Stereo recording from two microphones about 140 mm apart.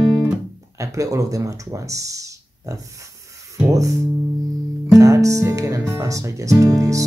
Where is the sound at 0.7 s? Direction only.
20° right (ahead or behind).